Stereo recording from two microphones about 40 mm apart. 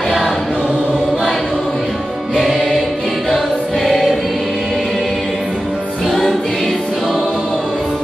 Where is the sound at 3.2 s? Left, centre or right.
Centre.